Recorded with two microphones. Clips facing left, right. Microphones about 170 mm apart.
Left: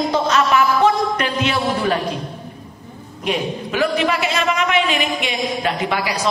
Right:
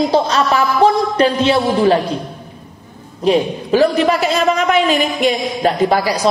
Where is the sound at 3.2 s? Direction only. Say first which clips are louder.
Right 8 dB; 35° right (ahead or behind).